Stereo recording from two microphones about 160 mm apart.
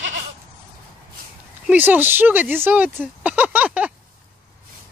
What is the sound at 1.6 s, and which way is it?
Speech, 10° right (ahead or behind).